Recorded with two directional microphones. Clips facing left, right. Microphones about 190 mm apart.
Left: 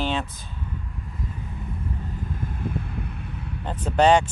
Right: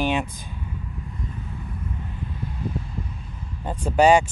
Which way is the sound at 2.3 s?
50° left (ahead or behind).